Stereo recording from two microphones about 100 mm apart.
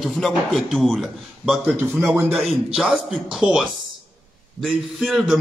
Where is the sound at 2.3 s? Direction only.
Centre (ahead or behind).